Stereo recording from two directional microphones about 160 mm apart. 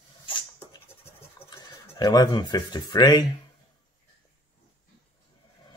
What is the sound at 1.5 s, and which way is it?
Speech, 25° left (ahead or behind).